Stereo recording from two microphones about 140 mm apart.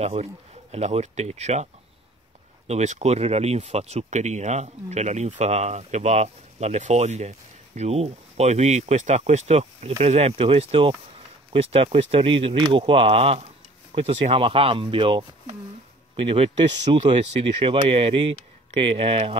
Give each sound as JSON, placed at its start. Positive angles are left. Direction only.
{"t": 0.0, "sound": "speech", "side_deg": -50}